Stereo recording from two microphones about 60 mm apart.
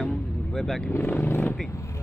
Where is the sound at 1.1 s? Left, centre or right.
Left.